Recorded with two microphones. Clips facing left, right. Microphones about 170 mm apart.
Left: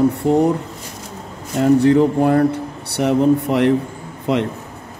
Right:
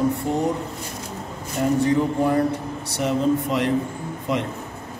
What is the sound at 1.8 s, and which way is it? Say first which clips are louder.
Speech: left 6 dB; 65° left (ahead or behind).